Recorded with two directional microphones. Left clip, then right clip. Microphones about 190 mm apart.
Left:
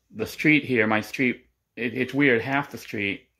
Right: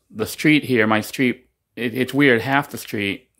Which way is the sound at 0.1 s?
25° right (ahead or behind).